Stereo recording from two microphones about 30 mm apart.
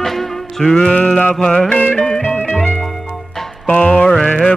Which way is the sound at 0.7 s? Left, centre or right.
Left.